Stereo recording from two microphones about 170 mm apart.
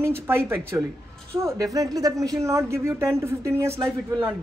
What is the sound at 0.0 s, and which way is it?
A woman's voice, 15° right (ahead or behind).